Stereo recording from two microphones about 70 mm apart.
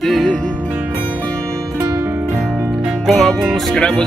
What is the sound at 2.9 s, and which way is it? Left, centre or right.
Music, centre.